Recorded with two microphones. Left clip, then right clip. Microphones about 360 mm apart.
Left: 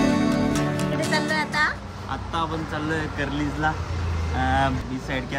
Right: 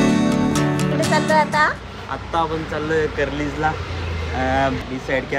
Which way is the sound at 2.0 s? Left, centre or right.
Centre.